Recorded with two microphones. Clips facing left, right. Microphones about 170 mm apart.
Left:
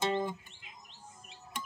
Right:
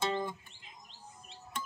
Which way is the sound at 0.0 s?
20° left (ahead or behind).